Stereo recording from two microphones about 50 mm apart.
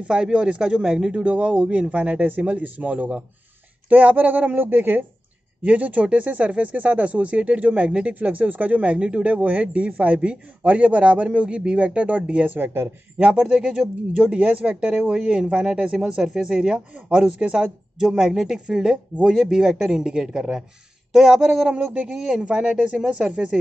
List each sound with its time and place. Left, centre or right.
0.0 s speech: centre
1.2 s speech: right
5.6 s speech: right
12.5 s speech: right
13.2 s speech: right